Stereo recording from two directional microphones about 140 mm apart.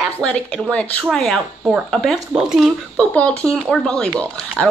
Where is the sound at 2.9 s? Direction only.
10° left (ahead or behind).